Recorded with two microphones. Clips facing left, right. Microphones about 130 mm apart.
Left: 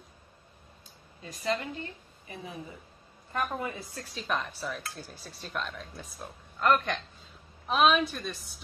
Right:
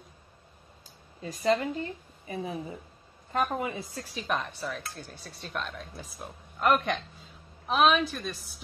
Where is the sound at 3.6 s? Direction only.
20° right (ahead or behind).